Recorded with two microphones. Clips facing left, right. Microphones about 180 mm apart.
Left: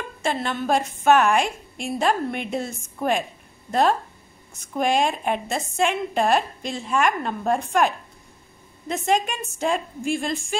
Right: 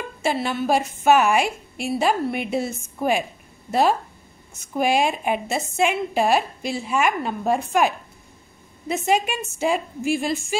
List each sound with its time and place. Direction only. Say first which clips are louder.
0.2 s a woman's voice: right 2 dB; 5° right (ahead or behind)
4.7 s a woman's voice: right 1 dB; 5° right (ahead or behind)